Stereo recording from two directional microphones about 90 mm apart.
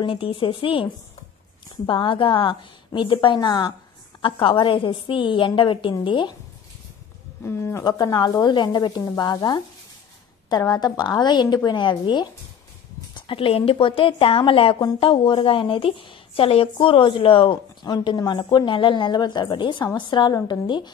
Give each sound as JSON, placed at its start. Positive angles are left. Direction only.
{"t": 0.0, "sound": "a woman's voice", "side_deg": 80}
{"t": 1.9, "sound": "a woman's voice", "side_deg": 70}
{"t": 7.4, "sound": "speech", "side_deg": 30}
{"t": 7.8, "sound": "speech", "side_deg": 55}
{"t": 10.7, "sound": "speech", "side_deg": 50}
{"t": 13.1, "sound": "a woman's voice", "side_deg": 80}
{"t": 17.8, "sound": "a woman's voice", "side_deg": 50}